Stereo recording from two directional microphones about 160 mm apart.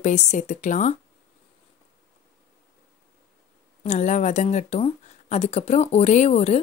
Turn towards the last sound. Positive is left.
turn(degrees=40)  # may be behind; listen again after turning